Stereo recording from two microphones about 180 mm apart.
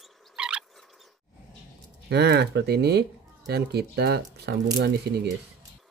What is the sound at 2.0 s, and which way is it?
Speech, 65° right (ahead or behind).